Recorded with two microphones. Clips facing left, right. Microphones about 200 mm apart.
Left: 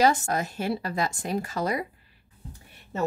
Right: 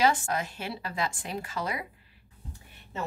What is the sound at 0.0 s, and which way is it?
Speech, 40° left (ahead or behind).